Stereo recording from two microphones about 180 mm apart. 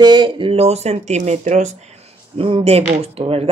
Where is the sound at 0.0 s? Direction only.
25° right (ahead or behind).